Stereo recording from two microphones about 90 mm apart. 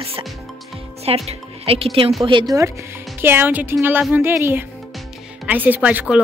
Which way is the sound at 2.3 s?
65° right (ahead or behind).